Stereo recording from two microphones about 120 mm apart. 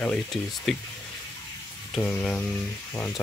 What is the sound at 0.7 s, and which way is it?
Speech, centre (ahead or behind).